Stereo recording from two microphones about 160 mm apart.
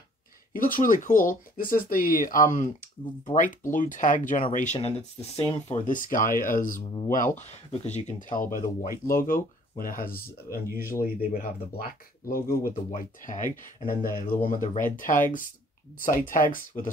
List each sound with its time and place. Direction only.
0.6 s speech: 60° left (ahead or behind)
3.7 s speech: 55° left (ahead or behind)
4.7 s speech: 40° left (ahead or behind)
5.7 s speech: 55° left (ahead or behind)
7.8 s speech: 45° left (ahead or behind)